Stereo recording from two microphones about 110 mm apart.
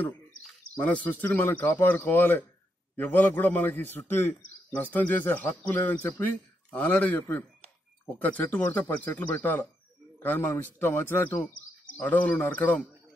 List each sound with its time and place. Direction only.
0.8 s a man's voice: 15° left (ahead or behind)